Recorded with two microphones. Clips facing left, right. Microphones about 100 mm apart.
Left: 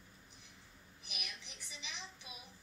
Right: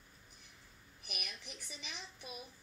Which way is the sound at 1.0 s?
50° right (ahead or behind).